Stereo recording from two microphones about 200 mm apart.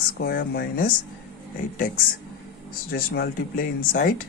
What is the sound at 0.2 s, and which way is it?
Speech, 50° left (ahead or behind).